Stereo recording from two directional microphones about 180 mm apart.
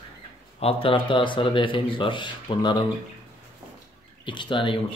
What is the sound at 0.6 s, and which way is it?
Speech, 30° left (ahead or behind).